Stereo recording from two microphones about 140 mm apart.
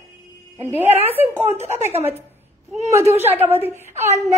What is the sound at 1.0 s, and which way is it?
Speech, 15° right (ahead or behind).